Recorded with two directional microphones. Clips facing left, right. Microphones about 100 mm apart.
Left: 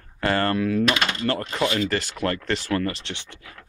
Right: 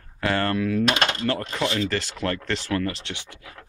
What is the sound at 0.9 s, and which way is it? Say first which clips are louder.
Speech: even; 25° right (ahead or behind).